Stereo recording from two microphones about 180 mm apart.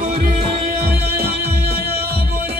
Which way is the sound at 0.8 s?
60° right (ahead or behind).